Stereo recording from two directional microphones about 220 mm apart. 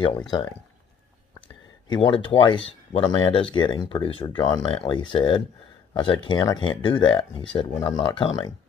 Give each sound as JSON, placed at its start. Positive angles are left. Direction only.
{"t": 0.0, "sound": "speech", "side_deg": 20}
{"t": 1.9, "sound": "speech", "side_deg": 20}